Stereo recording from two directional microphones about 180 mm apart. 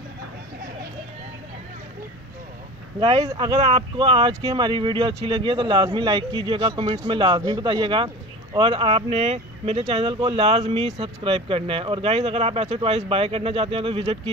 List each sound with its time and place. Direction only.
3.0 s speech: 35° right (ahead or behind)